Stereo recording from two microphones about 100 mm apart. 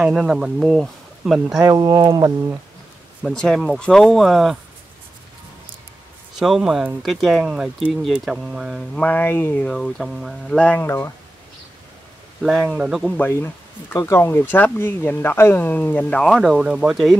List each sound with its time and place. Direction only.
0.0 s speech: 5° right (ahead or behind)
1.6 s speech: 35° right (ahead or behind)
3.3 s speech: 5° left (ahead or behind)
6.4 s speech: 5° right (ahead or behind)
7.4 s speech: 10° right (ahead or behind)
9.0 s speech: 20° left (ahead or behind)
9.7 s speech: 5° left (ahead or behind)
10.8 s speech: 25° left (ahead or behind)
12.4 s speech: centre (ahead or behind)
13.2 s speech: 25° left (ahead or behind)
16.3 s speech: centre (ahead or behind)